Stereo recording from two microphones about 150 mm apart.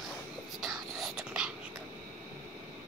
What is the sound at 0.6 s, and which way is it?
Whispering, centre (ahead or behind).